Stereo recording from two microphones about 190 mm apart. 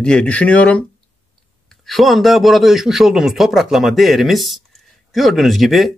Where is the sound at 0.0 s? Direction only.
5° left (ahead or behind).